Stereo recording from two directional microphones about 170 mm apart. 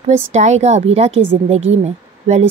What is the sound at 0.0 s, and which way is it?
A woman's voice, 40° right (ahead or behind).